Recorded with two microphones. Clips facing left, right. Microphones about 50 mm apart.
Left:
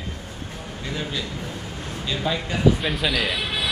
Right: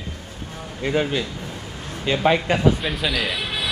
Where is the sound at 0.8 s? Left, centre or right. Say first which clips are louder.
Right 8 dB; right.